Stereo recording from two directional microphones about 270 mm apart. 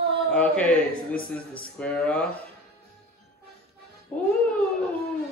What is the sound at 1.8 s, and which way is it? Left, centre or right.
Speech, centre.